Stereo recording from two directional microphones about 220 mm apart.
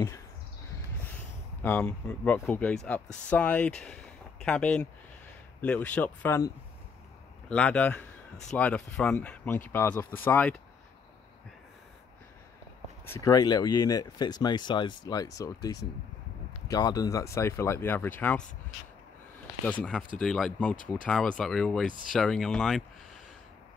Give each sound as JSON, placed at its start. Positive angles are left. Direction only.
{"t": 1.6, "sound": "speech", "side_deg": 10}
{"t": 13.1, "sound": "speech", "side_deg": 15}
{"t": 19.6, "sound": "speech", "side_deg": 5}